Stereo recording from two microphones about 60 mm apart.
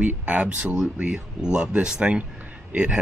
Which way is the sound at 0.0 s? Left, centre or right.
Right.